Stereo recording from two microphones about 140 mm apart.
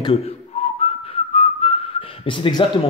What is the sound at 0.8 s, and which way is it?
Whistling, 40° left (ahead or behind).